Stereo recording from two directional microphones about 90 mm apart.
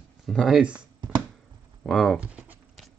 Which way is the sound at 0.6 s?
10° right (ahead or behind).